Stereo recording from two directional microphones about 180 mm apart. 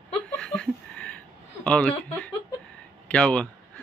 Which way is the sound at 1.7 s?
5° left (ahead or behind).